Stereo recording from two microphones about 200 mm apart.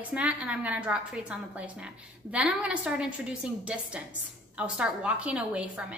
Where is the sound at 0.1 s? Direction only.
5° right (ahead or behind).